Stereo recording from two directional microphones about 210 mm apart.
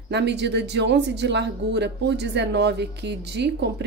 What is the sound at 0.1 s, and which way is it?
A woman's voice, 55° right (ahead or behind).